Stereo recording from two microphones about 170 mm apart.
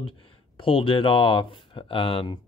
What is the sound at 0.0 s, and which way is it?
Speech, 30° left (ahead or behind).